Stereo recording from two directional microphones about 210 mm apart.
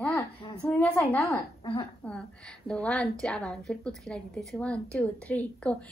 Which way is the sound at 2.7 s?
5° left (ahead or behind).